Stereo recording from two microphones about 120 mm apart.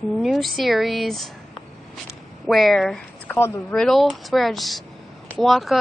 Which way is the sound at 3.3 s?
20° left (ahead or behind).